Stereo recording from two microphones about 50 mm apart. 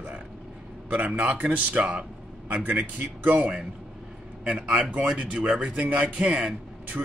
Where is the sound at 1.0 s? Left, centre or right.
Right.